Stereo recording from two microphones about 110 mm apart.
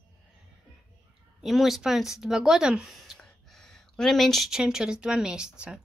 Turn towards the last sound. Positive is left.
turn(degrees=-10)  # may be behind; listen again after turning